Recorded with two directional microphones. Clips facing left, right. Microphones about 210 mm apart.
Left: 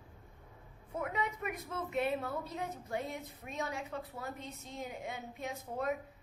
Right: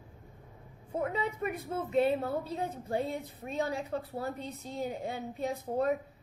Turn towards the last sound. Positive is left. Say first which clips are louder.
# right 7 dB
turn(degrees=-35)  # may be behind; listen again after turning